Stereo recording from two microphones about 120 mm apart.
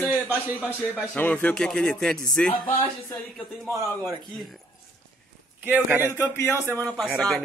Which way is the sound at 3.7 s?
25° right (ahead or behind).